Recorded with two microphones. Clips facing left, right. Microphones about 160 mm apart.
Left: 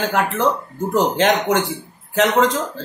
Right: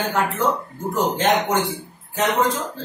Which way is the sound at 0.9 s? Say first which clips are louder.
Left 3 dB; 85° left.